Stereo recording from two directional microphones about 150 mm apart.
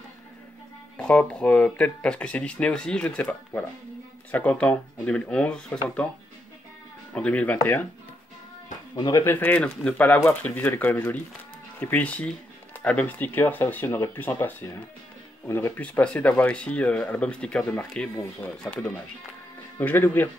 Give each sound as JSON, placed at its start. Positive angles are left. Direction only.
{"t": 0.9, "sound": "speech", "side_deg": 5}
{"t": 7.2, "sound": "speech", "side_deg": 10}
{"t": 8.9, "sound": "speech", "side_deg": 30}
{"t": 9.2, "sound": "speech", "side_deg": 15}